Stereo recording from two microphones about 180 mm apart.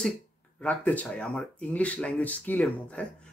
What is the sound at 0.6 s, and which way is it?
Speech, 5° left (ahead or behind).